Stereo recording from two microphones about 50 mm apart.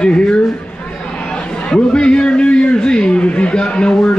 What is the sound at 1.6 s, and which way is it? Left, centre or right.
A man's voice, centre.